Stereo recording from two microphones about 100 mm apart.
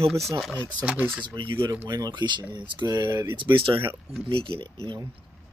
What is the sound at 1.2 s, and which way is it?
Speech, 55° right (ahead or behind).